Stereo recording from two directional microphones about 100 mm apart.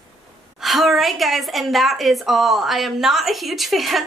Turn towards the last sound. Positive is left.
turn(degrees=0)  # may be behind; listen again after turning